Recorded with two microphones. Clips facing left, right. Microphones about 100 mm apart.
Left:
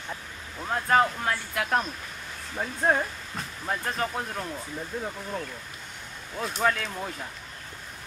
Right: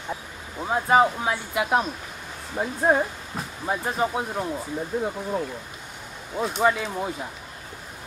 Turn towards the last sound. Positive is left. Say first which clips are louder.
# right 5 dB
turn(degrees=-10)  # may be behind; listen again after turning